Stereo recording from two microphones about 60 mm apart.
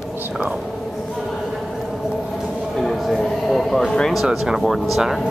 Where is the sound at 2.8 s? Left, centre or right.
Centre.